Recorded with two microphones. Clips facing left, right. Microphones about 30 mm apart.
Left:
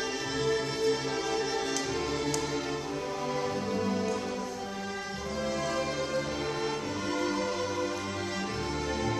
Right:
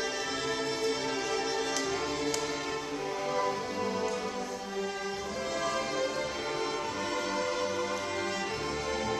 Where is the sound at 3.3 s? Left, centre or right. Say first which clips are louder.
Even; centre.